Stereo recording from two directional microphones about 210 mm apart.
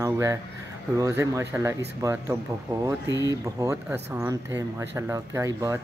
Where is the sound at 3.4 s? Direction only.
15° right (ahead or behind).